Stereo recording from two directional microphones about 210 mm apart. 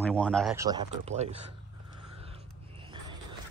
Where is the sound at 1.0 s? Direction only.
30° right (ahead or behind).